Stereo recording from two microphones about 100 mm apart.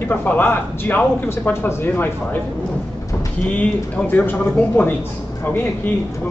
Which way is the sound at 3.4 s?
15° left (ahead or behind).